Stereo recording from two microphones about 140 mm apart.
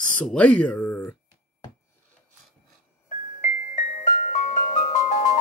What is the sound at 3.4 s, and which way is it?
Music, 65° left (ahead or behind).